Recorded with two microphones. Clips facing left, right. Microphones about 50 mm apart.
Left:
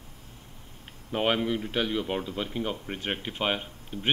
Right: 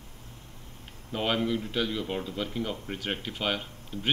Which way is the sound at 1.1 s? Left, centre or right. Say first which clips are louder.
Left 2 dB; left.